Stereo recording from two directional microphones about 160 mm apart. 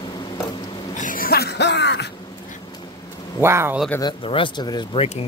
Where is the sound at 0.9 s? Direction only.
60° left (ahead or behind); by 2.1 s 90° left.